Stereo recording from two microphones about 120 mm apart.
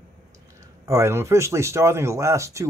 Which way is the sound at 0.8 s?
25° right (ahead or behind).